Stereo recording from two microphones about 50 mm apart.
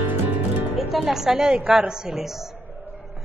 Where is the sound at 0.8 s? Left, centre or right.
Centre; by 1.9 s right.